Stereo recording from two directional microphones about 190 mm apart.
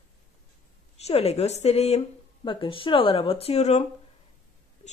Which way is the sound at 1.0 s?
35° left (ahead or behind).